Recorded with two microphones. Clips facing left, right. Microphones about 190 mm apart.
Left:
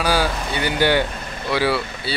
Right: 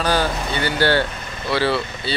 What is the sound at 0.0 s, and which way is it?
Speech, 10° left (ahead or behind).